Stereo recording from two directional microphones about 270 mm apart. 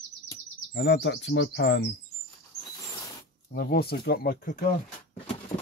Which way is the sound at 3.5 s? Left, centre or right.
Left.